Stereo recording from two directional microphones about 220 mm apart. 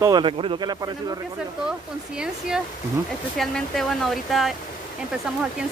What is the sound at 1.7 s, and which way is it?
Speech, 5° right (ahead or behind).